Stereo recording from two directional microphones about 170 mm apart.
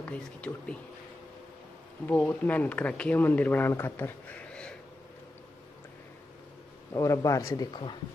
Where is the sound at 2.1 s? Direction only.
10° left (ahead or behind).